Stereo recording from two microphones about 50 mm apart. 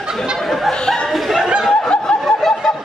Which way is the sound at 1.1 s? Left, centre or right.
Centre.